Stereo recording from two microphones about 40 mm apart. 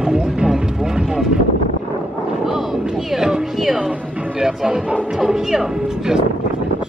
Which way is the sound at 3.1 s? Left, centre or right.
Centre.